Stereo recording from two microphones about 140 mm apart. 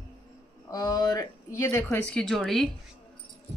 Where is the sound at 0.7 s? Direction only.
30° left (ahead or behind).